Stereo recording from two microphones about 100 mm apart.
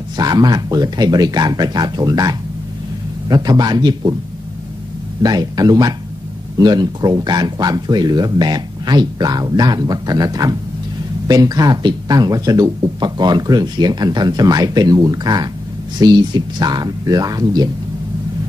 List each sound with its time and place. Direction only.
0.2 s speech: 45° right (ahead or behind)
5.2 s speech: 40° right (ahead or behind)